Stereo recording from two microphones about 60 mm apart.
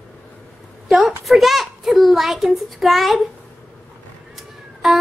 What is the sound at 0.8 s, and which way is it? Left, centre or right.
A child's voice, centre.